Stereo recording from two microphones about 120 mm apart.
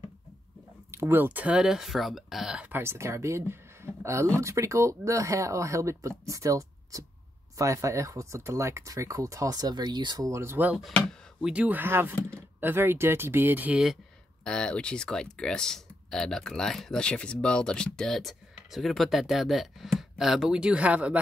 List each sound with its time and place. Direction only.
0.9 s speech: 20° right (ahead or behind)
10.8 s speech: 5° right (ahead or behind)
14.4 s speech: 5° left (ahead or behind); by 21.2 s 10° right (ahead or behind)